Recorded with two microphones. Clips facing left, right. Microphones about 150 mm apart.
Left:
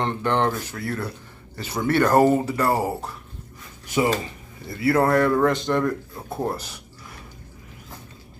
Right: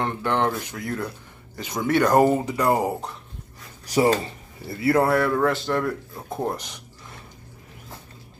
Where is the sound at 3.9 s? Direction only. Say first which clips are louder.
Right 2 dB; 35° right (ahead or behind).